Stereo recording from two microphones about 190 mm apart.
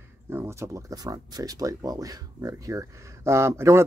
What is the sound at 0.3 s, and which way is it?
Speech, 15° right (ahead or behind).